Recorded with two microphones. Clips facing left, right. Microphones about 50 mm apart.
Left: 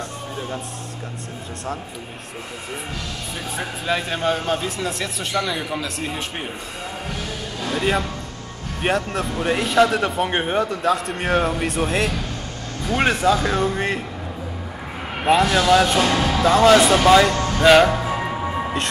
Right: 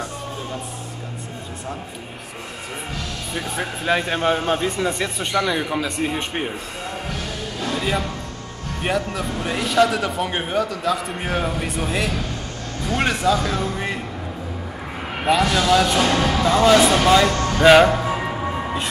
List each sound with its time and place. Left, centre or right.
3.3 s speech: centre
7.1 s music: centre
7.8 s speech: centre
8.8 s speech: centre
9.2 s speech: centre; by 11.0 s left
11.1 s a man's voice: centre
12.8 s speech: centre
15.4 s speech: centre